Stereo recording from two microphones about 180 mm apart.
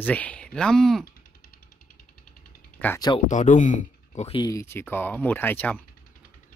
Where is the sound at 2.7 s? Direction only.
10° left (ahead or behind).